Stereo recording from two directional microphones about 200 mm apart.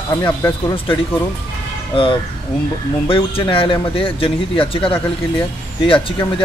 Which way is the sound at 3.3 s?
25° left (ahead or behind).